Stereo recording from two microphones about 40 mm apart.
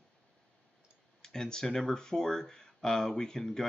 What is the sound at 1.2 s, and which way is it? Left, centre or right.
Speech, centre.